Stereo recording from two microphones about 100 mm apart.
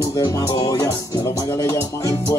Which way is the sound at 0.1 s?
35° left (ahead or behind).